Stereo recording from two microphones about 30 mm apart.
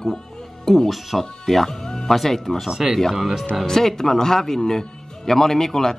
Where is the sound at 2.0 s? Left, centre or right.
Centre.